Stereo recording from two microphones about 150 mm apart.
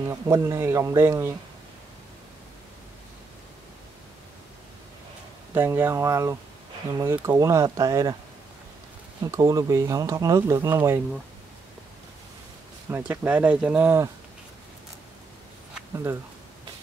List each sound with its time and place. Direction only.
0.0 s speech: 20° right (ahead or behind)
5.5 s speech: 15° right (ahead or behind)
9.2 s speech: 25° right (ahead or behind)
12.9 s speech: 15° right (ahead or behind)
15.9 s speech: 20° right (ahead or behind)